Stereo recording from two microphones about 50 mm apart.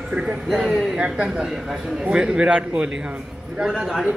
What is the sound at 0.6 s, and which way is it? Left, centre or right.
A woman's voice, centre.